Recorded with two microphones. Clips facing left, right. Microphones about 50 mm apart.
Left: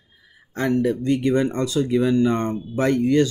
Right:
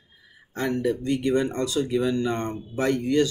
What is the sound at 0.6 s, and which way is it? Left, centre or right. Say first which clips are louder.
Speech: left 4 dB; left.